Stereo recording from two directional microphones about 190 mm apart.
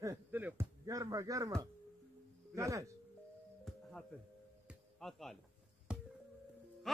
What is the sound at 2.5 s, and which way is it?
Speech, 15° right (ahead or behind).